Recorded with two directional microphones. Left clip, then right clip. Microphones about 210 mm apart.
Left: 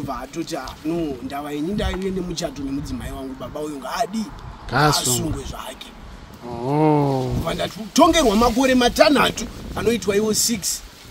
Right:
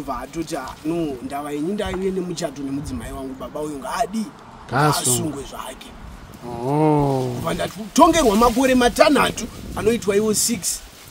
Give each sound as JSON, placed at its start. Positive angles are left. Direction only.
{"t": 0.1, "sound": "speech", "side_deg": -5}